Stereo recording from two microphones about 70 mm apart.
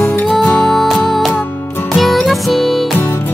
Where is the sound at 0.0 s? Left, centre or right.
Left.